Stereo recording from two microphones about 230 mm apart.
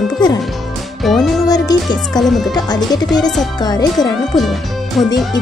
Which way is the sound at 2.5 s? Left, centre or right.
Centre.